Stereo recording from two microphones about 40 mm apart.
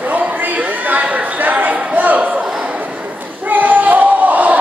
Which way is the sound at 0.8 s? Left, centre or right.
Right.